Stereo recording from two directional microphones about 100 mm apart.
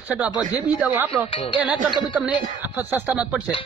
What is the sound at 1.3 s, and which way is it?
Speech, 60° left (ahead or behind).